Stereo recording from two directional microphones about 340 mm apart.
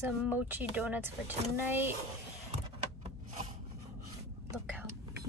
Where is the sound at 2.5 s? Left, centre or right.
Centre.